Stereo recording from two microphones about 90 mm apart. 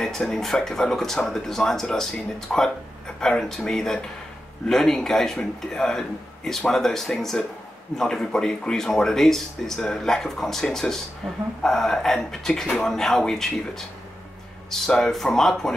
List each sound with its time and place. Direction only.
0.3 s speech: 5° left (ahead or behind)